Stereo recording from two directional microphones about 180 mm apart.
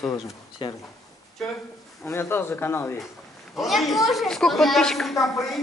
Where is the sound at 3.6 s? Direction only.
Centre (ahead or behind).